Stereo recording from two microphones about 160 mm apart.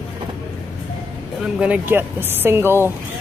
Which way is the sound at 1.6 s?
10° right (ahead or behind).